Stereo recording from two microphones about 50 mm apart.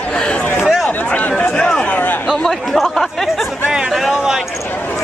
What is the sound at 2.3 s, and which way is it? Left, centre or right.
Speech, centre.